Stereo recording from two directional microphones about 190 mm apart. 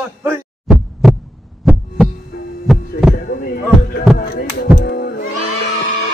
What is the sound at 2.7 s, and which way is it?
Heart sounds, centre (ahead or behind).